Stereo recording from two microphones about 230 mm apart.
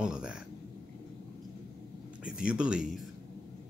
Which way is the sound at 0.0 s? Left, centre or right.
Centre.